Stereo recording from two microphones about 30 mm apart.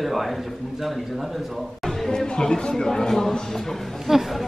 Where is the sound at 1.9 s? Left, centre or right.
Centre.